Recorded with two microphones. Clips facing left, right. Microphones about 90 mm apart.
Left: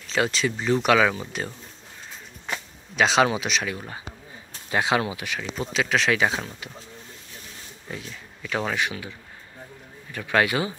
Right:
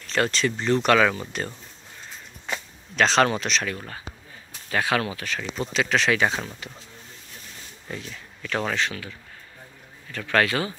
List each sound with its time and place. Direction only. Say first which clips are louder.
0.0 s speech: even; 5° left (ahead or behind)
5.4 s speech: right 1 dB; centre (ahead or behind)
7.9 s speech: right 1 dB; 5° left (ahead or behind)
10.1 s speech: even; 15° left (ahead or behind)